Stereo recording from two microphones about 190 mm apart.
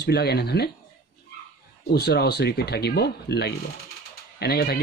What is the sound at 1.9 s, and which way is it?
Speech, 60° left (ahead or behind).